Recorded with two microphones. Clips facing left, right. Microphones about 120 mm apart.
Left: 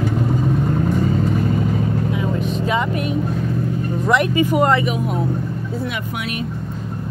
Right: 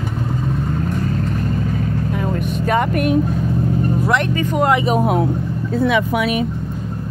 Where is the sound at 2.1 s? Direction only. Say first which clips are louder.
Even; 50° right (ahead or behind).